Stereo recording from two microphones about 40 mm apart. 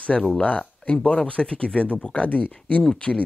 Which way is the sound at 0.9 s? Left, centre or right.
Left.